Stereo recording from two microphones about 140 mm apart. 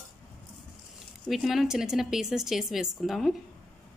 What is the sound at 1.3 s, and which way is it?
A woman's voice, centre (ahead or behind).